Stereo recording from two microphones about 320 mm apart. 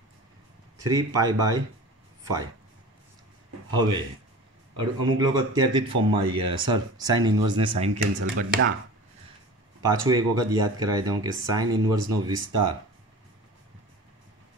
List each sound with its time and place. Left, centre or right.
0.8 s speech: centre
3.7 s speech: centre
8.2 s speech: right
9.8 s speech: centre